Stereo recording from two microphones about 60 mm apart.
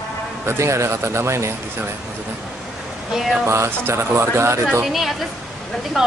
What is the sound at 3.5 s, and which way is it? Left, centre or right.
A man's voice, right.